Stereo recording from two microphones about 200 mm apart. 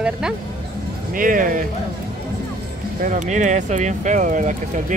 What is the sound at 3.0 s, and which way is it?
Speech, 40° right (ahead or behind).